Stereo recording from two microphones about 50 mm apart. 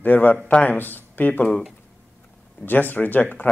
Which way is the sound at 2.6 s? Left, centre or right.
Left.